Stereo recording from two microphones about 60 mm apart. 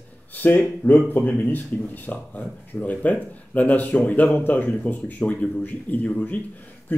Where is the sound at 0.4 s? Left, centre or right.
Left.